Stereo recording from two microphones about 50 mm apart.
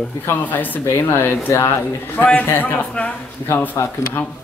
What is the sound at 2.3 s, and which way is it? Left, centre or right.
Speech, left.